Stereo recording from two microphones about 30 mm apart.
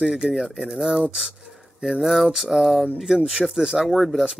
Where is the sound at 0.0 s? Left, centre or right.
Centre.